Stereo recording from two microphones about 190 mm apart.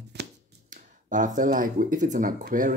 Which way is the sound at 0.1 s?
60° right (ahead or behind).